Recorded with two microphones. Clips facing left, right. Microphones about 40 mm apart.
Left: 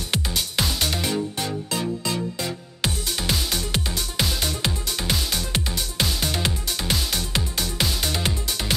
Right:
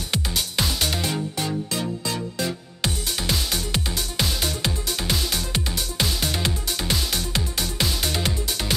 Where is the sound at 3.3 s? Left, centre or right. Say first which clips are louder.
Even; centre.